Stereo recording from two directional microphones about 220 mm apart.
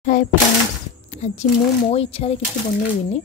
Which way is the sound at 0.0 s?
35° left (ahead or behind).